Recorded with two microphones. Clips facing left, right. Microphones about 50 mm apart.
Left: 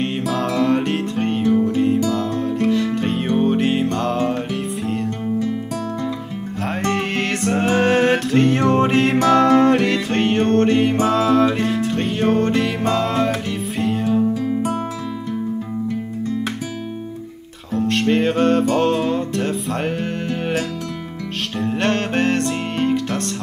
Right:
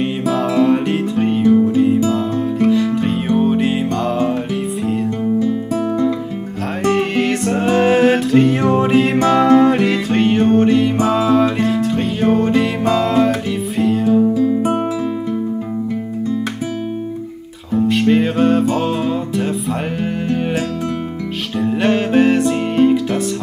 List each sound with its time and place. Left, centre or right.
0.0 s music: centre
2.0 s music: centre
2.7 s music: centre
6.9 s music: centre
17.7 s music: centre
21.5 s music: centre